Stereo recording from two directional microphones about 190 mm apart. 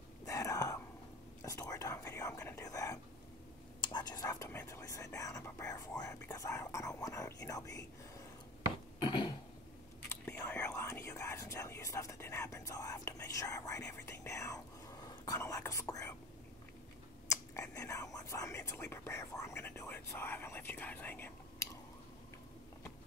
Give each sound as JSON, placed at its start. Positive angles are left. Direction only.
{"t": 0.2, "sound": "whispering", "side_deg": 15}
{"t": 3.8, "sound": "speech", "side_deg": 20}
{"t": 9.0, "sound": "a sound", "side_deg": 25}
{"t": 10.0, "sound": "whispering", "side_deg": 10}
{"t": 17.3, "sound": "whispering", "side_deg": 15}